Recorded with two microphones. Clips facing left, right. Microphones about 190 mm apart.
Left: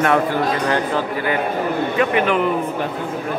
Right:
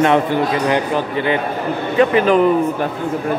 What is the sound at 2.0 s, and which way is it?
Speech, 35° right (ahead or behind).